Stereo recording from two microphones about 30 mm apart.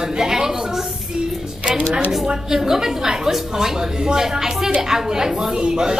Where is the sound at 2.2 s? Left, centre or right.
Right.